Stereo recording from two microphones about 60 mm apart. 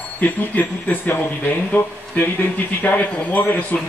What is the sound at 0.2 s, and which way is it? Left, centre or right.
A man's voice, left.